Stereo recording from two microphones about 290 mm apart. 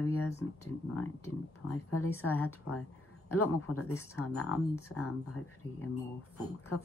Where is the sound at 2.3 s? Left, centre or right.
Left.